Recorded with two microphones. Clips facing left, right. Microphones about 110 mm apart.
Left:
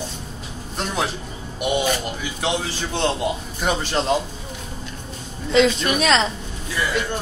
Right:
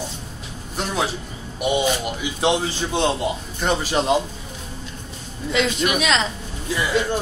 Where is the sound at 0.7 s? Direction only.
5° right (ahead or behind).